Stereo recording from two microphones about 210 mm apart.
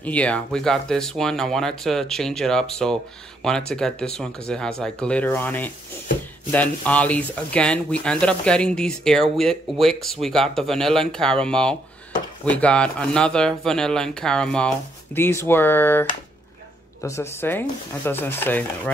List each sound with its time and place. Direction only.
0.0 s speech: 5° left (ahead or behind)